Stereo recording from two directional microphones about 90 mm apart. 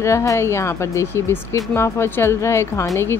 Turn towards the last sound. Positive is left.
turn(degrees=35)  # may be behind; listen again after turning